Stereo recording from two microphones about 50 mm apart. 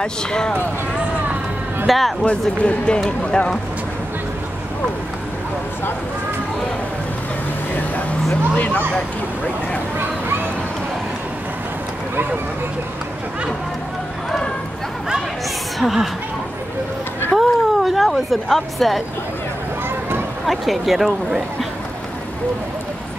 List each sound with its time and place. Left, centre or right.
0.0 s speech: centre
1.9 s speech: centre
2.6 s speech: left
8.5 s speech: left
9.9 s a sound: right
15.8 s speech: centre
17.4 s a sound: centre
20.4 s speech: centre